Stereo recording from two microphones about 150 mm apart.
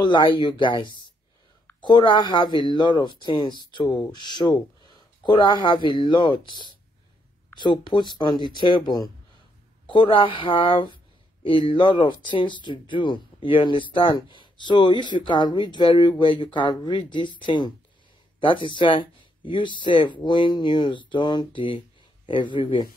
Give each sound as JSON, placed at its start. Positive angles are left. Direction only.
{"t": 0.0, "sound": "speech", "side_deg": 30}